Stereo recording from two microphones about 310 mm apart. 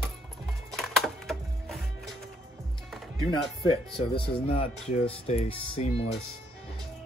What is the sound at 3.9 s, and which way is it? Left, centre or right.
Speech, centre.